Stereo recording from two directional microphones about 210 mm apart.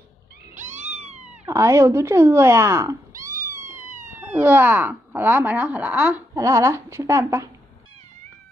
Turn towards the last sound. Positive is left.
turn(degrees=-15)  # may be behind; listen again after turning